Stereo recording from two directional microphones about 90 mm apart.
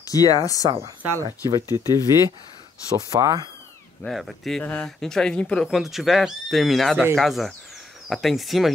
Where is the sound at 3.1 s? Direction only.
45° right (ahead or behind).